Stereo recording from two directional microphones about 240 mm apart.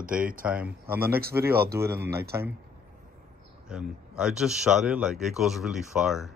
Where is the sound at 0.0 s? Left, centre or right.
Right.